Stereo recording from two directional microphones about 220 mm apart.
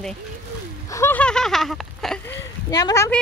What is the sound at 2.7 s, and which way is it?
Speech, 15° left (ahead or behind).